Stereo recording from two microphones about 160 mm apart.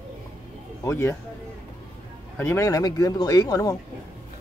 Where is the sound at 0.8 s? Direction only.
15° left (ahead or behind).